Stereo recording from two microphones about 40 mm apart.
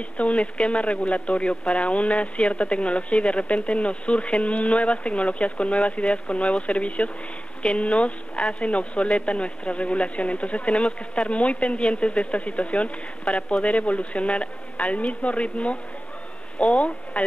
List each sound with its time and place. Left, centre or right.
0.2 s speech: left